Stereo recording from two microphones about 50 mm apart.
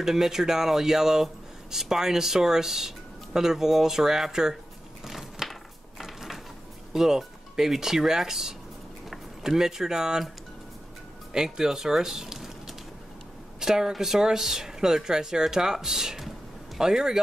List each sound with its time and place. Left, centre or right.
0.0 s speech: centre
5.0 s a sound: centre
6.9 s speech: centre
11.3 s speech: centre